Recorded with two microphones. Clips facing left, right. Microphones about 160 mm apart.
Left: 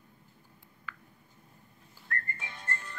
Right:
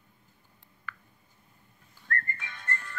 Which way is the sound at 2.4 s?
30° left (ahead or behind).